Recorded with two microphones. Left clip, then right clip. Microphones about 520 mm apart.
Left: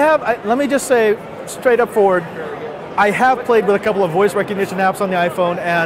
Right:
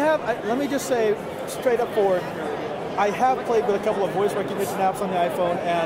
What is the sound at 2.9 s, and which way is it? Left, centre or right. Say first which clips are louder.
A man's voice: left 8 dB; left.